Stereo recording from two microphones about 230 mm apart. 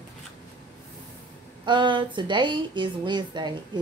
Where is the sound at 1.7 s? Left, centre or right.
Right.